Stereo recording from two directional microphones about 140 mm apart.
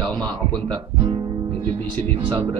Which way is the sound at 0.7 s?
35° right (ahead or behind).